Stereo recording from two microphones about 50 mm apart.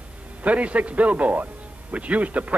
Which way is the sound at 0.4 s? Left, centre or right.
Right.